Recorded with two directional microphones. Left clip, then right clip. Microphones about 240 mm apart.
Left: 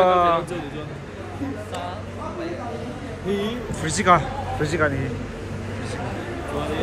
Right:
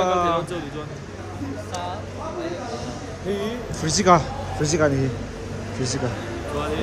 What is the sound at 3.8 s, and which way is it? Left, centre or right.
Speech, centre.